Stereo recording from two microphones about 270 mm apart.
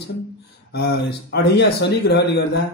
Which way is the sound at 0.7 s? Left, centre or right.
Left.